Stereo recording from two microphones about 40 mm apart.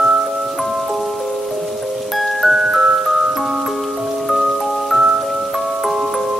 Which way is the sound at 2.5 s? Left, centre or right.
Centre.